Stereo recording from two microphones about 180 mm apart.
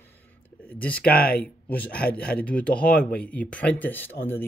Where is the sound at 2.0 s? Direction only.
60° left (ahead or behind).